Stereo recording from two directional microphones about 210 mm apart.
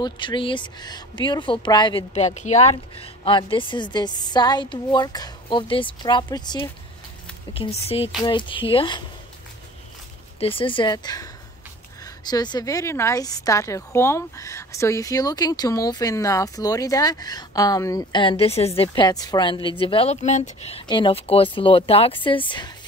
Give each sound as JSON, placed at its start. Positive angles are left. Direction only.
{"t": 0.0, "sound": "speech", "side_deg": 20}
{"t": 10.4, "sound": "a woman's voice", "side_deg": 25}
{"t": 20.8, "sound": "speech", "side_deg": 20}